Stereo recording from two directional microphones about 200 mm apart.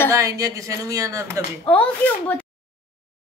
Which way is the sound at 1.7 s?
10° left (ahead or behind).